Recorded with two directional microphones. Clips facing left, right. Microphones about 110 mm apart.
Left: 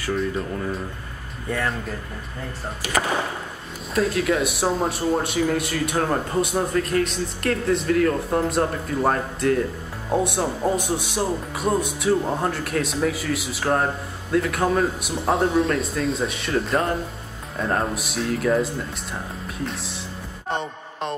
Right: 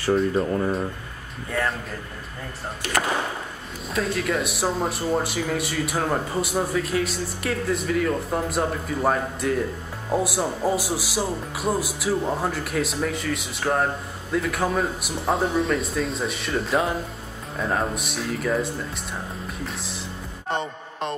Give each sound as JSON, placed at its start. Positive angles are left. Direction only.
{"t": 0.0, "sound": "speech", "side_deg": -35}
{"t": 1.5, "sound": "speech", "side_deg": 0}
{"t": 3.9, "sound": "speech", "side_deg": 0}